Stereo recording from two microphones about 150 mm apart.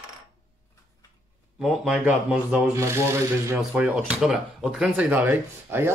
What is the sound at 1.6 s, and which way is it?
Speech, centre (ahead or behind).